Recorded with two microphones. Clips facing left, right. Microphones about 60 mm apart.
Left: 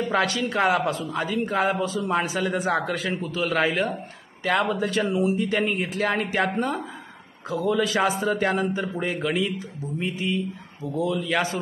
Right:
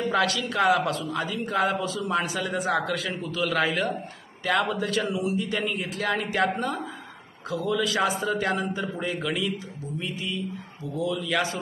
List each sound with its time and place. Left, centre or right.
0.1 s a man's voice: left
6.4 s a woman's voice: left